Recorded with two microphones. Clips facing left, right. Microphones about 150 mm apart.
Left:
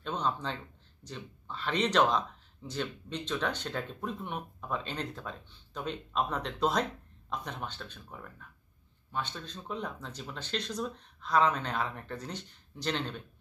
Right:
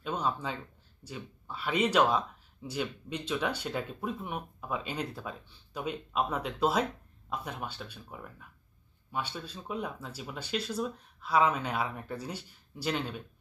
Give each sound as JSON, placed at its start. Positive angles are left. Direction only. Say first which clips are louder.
{"t": 0.0, "sound": "a man's voice", "louder": "right 1 dB", "side_deg": -10}